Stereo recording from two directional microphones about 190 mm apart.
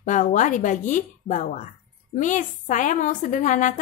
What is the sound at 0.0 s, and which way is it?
A woman's voice, 40° left (ahead or behind).